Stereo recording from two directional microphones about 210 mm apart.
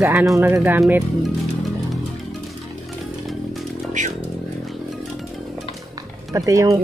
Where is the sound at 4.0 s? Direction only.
35° right (ahead or behind).